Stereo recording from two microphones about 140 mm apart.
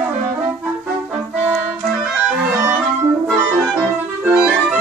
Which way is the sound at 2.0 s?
5° right (ahead or behind).